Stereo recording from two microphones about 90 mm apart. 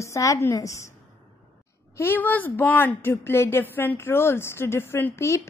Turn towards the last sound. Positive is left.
turn(degrees=30)  # may be behind; listen again after turning